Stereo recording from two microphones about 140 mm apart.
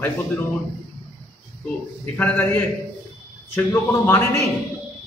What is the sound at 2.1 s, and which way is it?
Speech, 15° left (ahead or behind).